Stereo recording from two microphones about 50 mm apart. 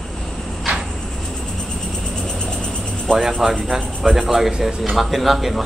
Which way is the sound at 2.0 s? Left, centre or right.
Centre.